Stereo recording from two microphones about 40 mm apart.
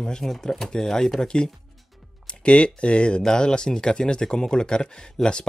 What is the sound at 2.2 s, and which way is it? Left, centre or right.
Speech, left.